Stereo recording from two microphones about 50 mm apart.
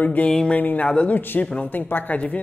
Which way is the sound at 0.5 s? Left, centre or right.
Left.